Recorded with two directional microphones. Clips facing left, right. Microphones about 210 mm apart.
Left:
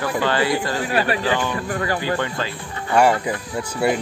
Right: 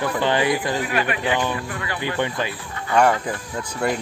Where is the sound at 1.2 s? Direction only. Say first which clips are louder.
Left 1 dB; 15° right (ahead or behind).